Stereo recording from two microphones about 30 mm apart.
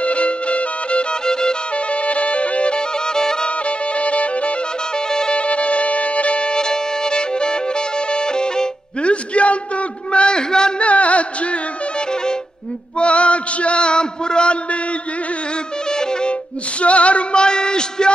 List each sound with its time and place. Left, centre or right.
0.0 s music: left
1.2 s music: left
1.9 s music: left
3.1 s music: left
3.4 s music: left
4.9 s music: left
5.4 s music: left
9.0 s a sound: left
10.8 s carnatic music: left
12.9 s a sound: left
15.9 s music: left
16.8 s music: left